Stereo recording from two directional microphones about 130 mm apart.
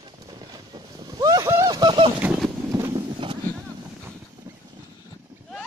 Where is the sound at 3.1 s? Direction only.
35° right (ahead or behind).